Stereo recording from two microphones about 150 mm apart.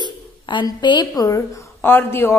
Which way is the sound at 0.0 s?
30° left (ahead or behind).